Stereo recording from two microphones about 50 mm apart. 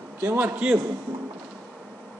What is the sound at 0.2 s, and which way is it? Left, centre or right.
Speech, right.